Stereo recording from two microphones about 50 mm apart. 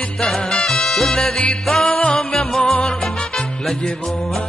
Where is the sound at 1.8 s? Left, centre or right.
Left.